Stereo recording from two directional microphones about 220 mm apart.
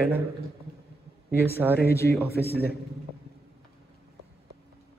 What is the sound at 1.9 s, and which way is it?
Speech, 10° left (ahead or behind).